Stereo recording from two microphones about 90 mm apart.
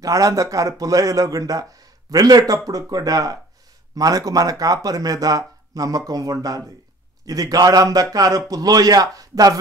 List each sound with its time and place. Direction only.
0.0 s speech: 40° right (ahead or behind)